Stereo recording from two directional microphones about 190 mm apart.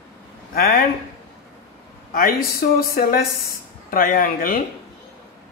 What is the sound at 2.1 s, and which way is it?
Speech, 50° left (ahead or behind).